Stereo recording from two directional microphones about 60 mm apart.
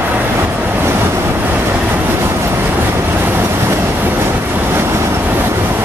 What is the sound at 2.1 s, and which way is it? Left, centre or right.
Train, right.